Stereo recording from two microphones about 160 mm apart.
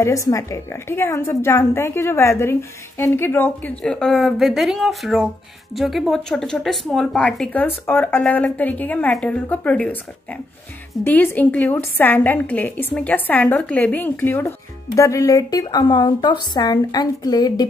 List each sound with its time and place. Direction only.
0.0 s a woman's voice: 20° left (ahead or behind)